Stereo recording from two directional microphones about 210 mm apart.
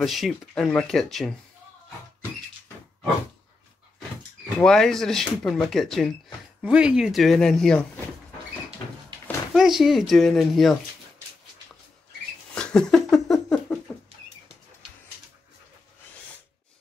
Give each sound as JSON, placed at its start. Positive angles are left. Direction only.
{"t": 0.0, "sound": "speech", "side_deg": 0}
{"t": 4.6, "sound": "speech", "side_deg": 5}
{"t": 9.5, "sound": "speech", "side_deg": 0}
{"t": 12.5, "sound": "laughter", "side_deg": 5}